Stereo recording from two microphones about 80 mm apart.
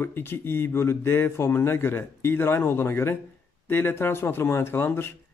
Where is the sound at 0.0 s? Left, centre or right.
Left.